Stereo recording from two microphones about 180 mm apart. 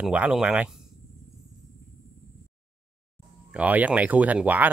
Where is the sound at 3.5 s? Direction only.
10° right (ahead or behind).